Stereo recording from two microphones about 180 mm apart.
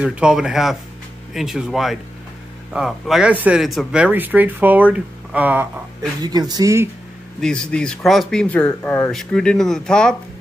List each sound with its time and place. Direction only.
0.0 s speech: 5° right (ahead or behind)
6.2 s speech: 20° right (ahead or behind)
7.3 s speech: 5° left (ahead or behind)